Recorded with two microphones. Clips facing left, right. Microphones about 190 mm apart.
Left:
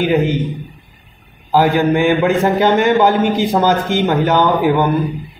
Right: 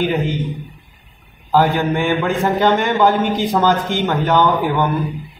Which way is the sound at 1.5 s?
10° left (ahead or behind).